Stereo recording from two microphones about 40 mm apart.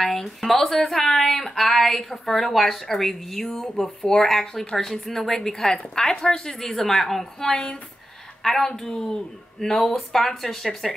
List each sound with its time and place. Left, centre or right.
0.0 s a woman's voice: centre
7.5 s speech: left
8.4 s a woman's voice: centre